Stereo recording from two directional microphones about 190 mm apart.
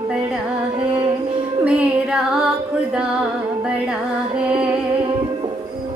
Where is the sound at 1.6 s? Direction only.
5° right (ahead or behind).